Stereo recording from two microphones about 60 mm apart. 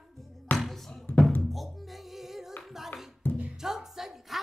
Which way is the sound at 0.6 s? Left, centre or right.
Centre.